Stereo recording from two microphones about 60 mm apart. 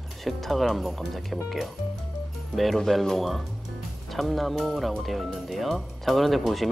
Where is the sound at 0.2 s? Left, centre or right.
Centre.